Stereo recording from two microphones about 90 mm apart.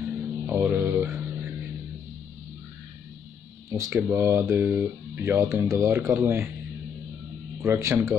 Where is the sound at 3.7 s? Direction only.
35° right (ahead or behind).